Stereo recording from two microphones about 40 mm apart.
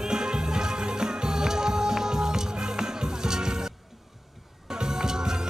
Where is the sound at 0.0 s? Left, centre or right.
Centre.